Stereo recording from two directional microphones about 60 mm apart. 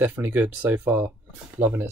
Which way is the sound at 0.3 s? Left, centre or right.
Right.